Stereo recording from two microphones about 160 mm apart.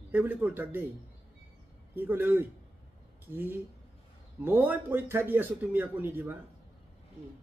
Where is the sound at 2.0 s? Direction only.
10° right (ahead or behind).